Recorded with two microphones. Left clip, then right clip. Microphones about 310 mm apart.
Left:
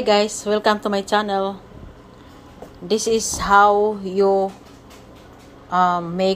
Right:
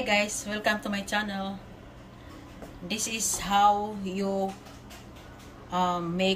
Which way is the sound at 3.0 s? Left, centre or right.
Centre.